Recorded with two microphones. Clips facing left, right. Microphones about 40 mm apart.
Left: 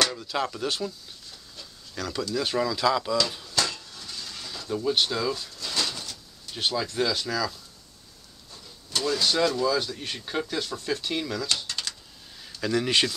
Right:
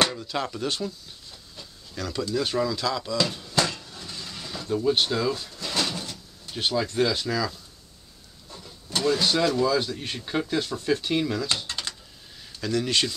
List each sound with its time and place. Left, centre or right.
0.2 s speech: centre
1.6 s a sound: centre
2.3 s speech: centre
3.3 s speech: centre
3.5 s a sound: centre
4.6 s bird: centre; by 6.5 s right
6.5 s speech: centre
8.5 s vehicle: centre
9.7 s speech: centre
11.6 s typing: right
12.5 s speech: centre